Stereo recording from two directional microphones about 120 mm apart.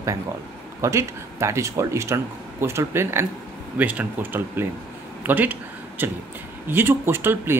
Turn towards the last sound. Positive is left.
turn(degrees=-20)  # may be behind; listen again after turning